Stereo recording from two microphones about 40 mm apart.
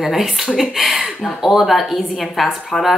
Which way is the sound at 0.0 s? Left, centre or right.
Centre.